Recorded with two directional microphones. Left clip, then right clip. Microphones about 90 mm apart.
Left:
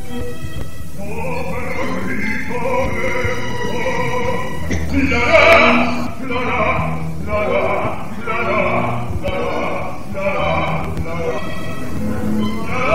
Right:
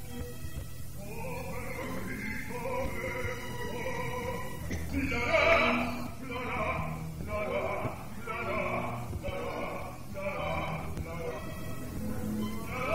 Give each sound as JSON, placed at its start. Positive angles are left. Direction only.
{"t": 1.3, "sound": "music", "side_deg": -20}
{"t": 10.2, "sound": "horse", "side_deg": -25}
{"t": 12.1, "sound": "music", "side_deg": -25}